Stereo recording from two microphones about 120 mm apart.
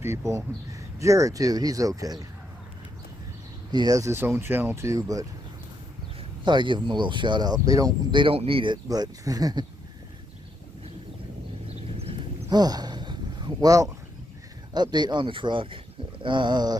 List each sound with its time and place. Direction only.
0.0 s speech: 25° right (ahead or behind)
3.7 s speech: 30° right (ahead or behind)
6.4 s speech: 40° right (ahead or behind)
8.2 s speech: 50° right (ahead or behind)
8.8 s speech: 30° right (ahead or behind)
12.0 s horse: 55° right (ahead or behind)
12.4 s a sound: 35° right (ahead or behind)
14.7 s speech: 35° right (ahead or behind)